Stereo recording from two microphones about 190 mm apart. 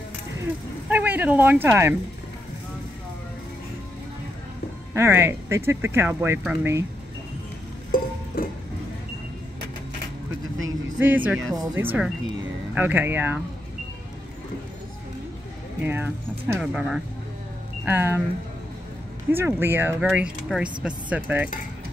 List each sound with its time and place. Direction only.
0.8 s speech: 10° right (ahead or behind)
4.9 s speech: 15° right (ahead or behind)
8.4 s music: 50° left (ahead or behind)
10.7 s speech: 10° right (ahead or behind)
15.8 s speech: 10° right (ahead or behind)
17.8 s speech: 10° right (ahead or behind)
19.3 s speech: 10° right (ahead or behind)